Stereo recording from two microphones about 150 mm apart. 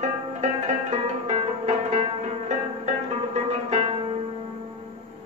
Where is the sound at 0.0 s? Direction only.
50° right (ahead or behind).